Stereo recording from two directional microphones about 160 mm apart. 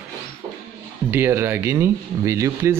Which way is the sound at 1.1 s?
15° right (ahead or behind).